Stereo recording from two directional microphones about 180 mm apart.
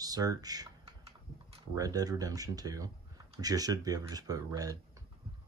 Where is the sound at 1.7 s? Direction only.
20° right (ahead or behind).